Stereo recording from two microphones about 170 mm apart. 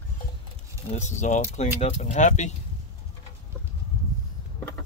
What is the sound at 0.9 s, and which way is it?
Speech, 45° left (ahead or behind).